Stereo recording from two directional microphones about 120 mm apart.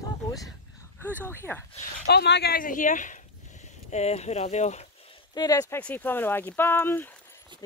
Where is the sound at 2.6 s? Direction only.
90° left.